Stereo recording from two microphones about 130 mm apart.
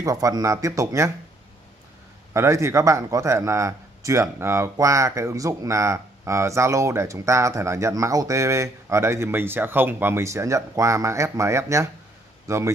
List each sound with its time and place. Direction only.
0.0 s a man's voice: 25° right (ahead or behind)
2.3 s a man's voice: 20° right (ahead or behind)